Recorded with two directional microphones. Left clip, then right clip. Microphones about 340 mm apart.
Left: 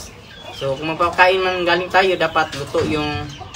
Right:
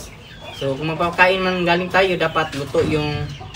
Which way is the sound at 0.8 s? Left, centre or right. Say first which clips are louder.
Left 2 dB; centre.